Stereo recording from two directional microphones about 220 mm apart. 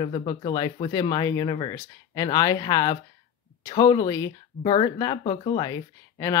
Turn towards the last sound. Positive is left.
turn(degrees=15)  # may be behind; listen again after turning